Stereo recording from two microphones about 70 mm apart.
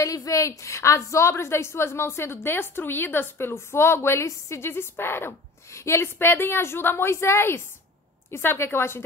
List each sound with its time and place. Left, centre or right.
0.0 s a woman's voice: left